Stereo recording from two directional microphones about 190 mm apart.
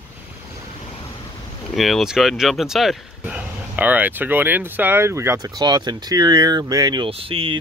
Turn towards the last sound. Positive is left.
turn(degrees=-30)  # may be behind; listen again after turning